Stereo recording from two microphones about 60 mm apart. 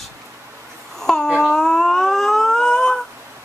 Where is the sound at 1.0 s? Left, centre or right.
Centre.